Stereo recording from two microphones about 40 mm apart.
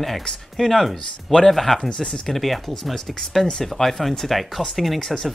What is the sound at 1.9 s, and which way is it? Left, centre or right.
Speech, centre.